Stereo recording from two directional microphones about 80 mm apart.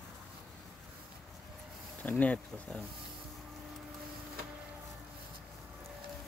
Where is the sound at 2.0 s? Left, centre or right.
Centre.